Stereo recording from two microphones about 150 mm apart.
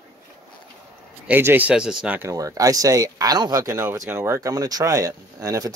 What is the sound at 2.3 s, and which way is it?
Speech, 25° right (ahead or behind).